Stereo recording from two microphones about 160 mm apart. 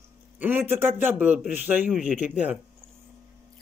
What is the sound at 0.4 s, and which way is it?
A man's voice, 15° right (ahead or behind).